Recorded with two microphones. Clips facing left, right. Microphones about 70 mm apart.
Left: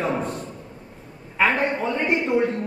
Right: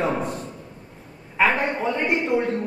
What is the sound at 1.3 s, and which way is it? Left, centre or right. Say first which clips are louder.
A woman's voice: even; centre.